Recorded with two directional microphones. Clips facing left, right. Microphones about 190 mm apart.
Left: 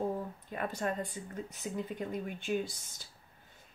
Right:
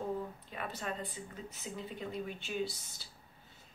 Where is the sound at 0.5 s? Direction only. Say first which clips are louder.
Left 5 dB; 45° left (ahead or behind).